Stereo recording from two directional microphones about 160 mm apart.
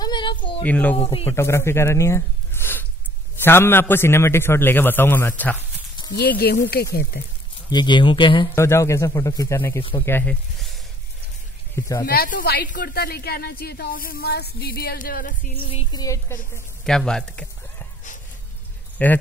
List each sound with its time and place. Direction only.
0.0 s a sound: 30° left (ahead or behind)
0.6 s a man's voice: 10° left (ahead or behind)
0.9 s a man's voice: 35° left (ahead or behind)
1.3 s a man's voice: 15° left (ahead or behind)
6.0 s a sound: 30° left (ahead or behind)
6.3 s speech: 75° left (ahead or behind)
7.7 s speech: 30° left (ahead or behind)
8.5 s a man's voice: 15° left (ahead or behind)
11.7 s speech: 20° left (ahead or behind)
12.1 s speech: 65° left (ahead or behind)
15.6 s speech: 30° left (ahead or behind)
16.8 s speech: 5° left (ahead or behind)
19.0 s a man's voice: 10° left (ahead or behind)